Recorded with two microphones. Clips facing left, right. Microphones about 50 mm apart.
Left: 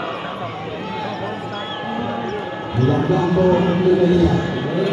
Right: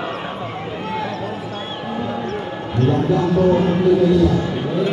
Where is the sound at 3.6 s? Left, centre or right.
Centre.